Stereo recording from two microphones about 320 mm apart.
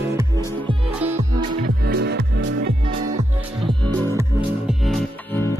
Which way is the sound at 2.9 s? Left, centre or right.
Centre.